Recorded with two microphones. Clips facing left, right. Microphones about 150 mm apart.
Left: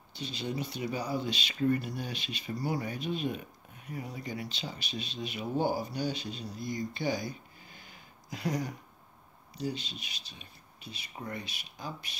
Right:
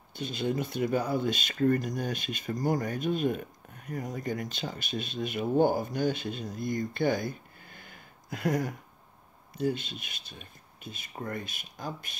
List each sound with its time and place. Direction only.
0.1 s speech: 50° right (ahead or behind)